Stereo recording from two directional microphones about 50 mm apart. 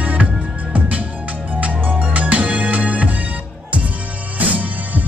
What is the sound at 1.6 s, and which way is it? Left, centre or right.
Music, right.